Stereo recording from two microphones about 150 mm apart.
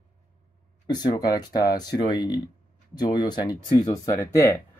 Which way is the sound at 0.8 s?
30° left (ahead or behind).